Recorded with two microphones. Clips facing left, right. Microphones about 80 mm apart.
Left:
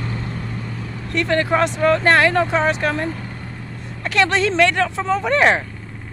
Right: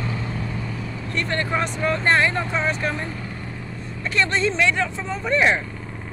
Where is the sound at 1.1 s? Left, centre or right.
Left.